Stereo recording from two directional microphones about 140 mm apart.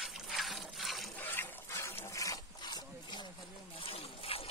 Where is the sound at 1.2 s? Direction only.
15° left (ahead or behind); by 3.2 s 30° left (ahead or behind).